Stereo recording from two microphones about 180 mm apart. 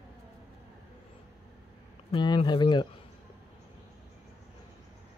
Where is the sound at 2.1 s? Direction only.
25° left (ahead or behind).